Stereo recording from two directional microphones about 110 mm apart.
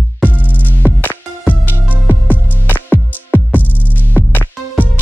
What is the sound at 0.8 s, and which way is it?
Music, 15° left (ahead or behind).